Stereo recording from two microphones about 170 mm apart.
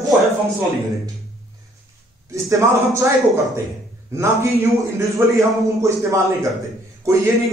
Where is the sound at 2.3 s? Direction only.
20° right (ahead or behind).